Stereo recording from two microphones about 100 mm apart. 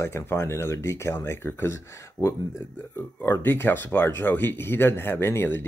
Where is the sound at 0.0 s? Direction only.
25° left (ahead or behind).